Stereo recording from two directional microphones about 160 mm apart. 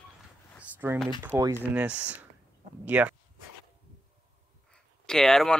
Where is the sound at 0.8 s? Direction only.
15° right (ahead or behind).